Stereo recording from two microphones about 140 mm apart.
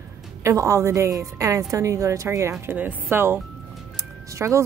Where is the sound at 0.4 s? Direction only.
20° right (ahead or behind).